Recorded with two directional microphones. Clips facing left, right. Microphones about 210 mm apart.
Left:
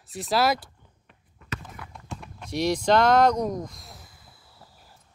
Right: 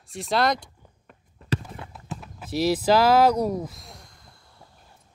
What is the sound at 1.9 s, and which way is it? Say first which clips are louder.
Speech: right 2 dB; 5° right (ahead or behind).